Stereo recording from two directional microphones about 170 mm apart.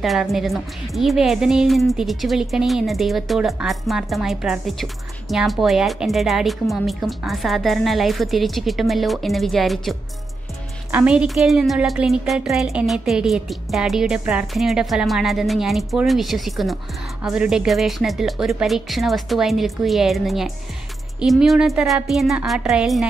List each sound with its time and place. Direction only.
0.0 s a woman's voice: centre (ahead or behind)